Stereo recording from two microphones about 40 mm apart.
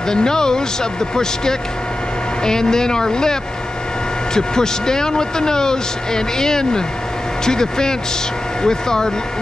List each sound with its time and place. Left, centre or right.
0.1 s speech: centre